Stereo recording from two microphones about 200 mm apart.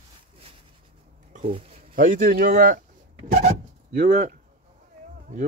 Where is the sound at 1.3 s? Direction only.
30° right (ahead or behind).